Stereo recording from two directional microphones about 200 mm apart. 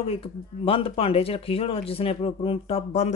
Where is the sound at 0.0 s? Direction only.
30° left (ahead or behind).